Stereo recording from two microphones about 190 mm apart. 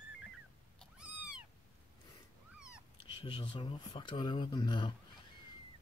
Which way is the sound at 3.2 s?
25° left (ahead or behind).